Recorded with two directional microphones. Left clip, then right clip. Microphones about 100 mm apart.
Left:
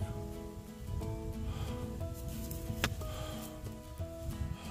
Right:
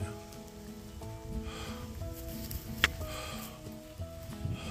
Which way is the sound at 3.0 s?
10° left (ahead or behind).